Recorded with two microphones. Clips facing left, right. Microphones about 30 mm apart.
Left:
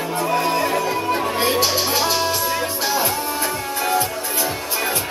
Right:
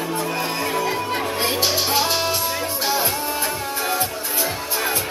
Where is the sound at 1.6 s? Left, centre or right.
Centre.